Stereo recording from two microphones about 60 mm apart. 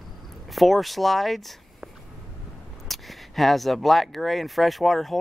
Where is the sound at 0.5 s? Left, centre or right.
Centre.